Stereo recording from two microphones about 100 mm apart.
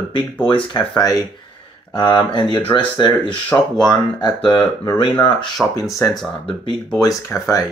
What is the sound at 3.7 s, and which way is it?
Speech, 45° left (ahead or behind).